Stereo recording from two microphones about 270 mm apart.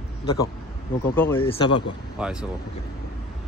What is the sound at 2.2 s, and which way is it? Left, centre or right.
Speech, centre.